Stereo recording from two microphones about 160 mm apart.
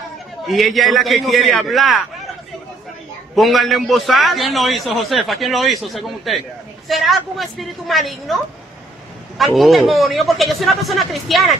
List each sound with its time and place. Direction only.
0.5 s a man's voice: centre (ahead or behind)
3.3 s a man's voice: centre (ahead or behind)
9.4 s a man's voice: centre (ahead or behind)